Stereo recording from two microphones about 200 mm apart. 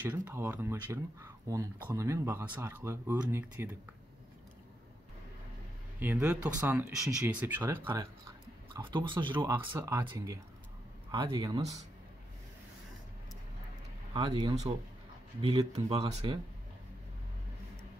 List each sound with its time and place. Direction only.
0.0 s speech: 10° right (ahead or behind)
5.9 s speech: 10° right (ahead or behind)
8.7 s speech: 25° right (ahead or behind)
14.1 s speech: 25° right (ahead or behind)